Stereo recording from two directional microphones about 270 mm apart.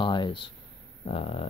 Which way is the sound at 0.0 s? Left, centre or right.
Centre.